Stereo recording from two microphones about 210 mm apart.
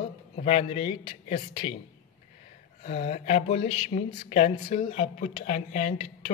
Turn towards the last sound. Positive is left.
turn(degrees=40)  # may be behind; listen again after turning